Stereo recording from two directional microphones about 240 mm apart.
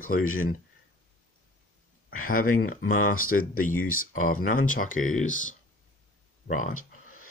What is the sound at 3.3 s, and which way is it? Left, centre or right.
Speech, left.